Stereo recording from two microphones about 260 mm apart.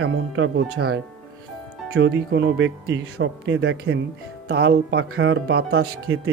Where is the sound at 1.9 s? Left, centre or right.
Right.